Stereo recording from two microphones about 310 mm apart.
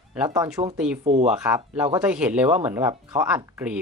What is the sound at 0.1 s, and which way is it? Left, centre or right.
Speech, centre.